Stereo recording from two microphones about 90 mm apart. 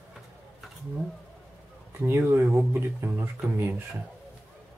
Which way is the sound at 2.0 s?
25° right (ahead or behind).